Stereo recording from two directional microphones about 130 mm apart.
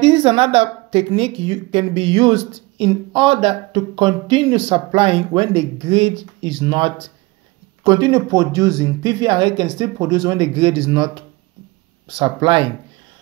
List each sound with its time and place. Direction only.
0.0 s a woman's voice: 45° right (ahead or behind)